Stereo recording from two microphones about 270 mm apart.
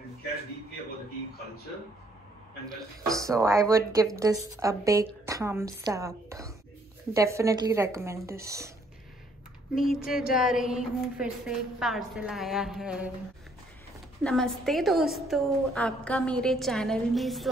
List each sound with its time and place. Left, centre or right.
3.2 s a woman's voice: centre
9.8 s a woman's voice: centre
14.2 s a woman's voice: centre